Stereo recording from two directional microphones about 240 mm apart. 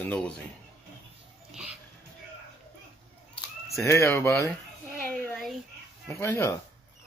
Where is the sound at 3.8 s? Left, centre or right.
Centre.